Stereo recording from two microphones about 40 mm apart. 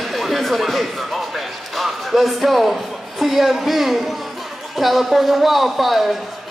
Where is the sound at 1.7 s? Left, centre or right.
Centre.